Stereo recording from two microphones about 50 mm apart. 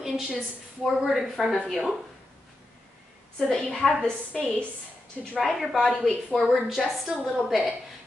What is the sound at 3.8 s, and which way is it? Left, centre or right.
Speech, centre.